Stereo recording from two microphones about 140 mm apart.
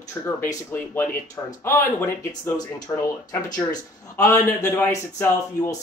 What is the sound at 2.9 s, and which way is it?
Speech, 30° left (ahead or behind).